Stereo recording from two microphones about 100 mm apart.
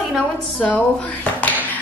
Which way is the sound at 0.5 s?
15° left (ahead or behind).